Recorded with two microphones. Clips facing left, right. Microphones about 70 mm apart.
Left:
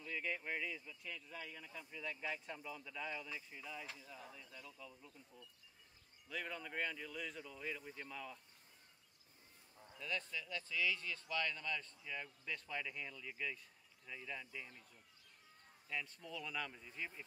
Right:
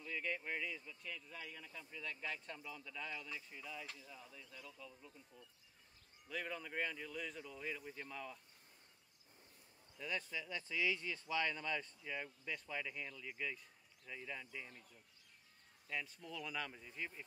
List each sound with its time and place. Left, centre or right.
0.0 s speech: centre
6.2 s speech: centre
9.9 s speech: centre
15.9 s speech: centre